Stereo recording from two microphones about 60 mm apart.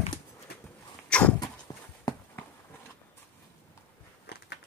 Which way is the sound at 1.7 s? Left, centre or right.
Left.